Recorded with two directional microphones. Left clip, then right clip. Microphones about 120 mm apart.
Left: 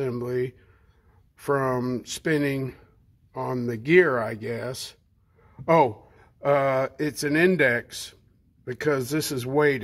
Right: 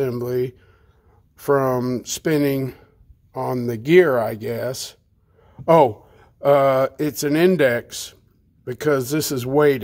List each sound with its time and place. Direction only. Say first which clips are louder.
0.0 s speech: right 5 dB; 35° right (ahead or behind)